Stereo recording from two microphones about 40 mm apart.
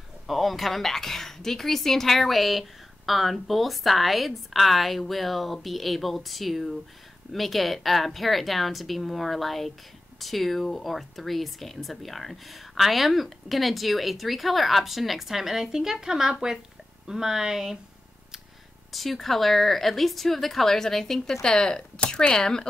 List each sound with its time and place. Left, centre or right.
0.3 s speech: centre
18.9 s speech: centre
22.0 s speech: left
22.3 s speech: centre